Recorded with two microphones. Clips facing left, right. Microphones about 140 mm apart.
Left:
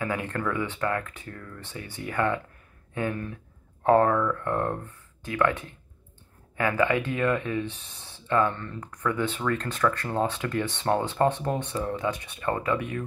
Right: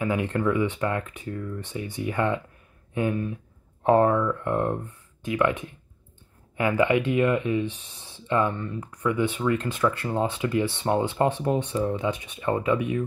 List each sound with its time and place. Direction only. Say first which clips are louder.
0.0 s speech: right 4 dB; 20° right (ahead or behind)